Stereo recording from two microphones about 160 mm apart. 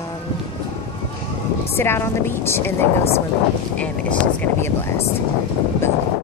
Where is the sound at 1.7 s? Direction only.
15° left (ahead or behind).